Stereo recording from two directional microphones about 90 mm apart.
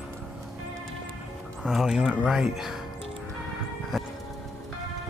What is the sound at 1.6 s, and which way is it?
Speech, 5° right (ahead or behind).